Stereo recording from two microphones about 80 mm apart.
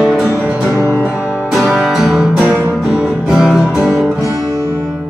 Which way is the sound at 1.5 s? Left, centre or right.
Centre.